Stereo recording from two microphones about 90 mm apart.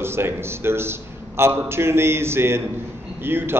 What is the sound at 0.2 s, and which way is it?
A man's voice, 25° right (ahead or behind).